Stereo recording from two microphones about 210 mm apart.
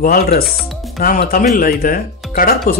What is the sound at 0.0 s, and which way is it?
Speech, 45° left (ahead or behind).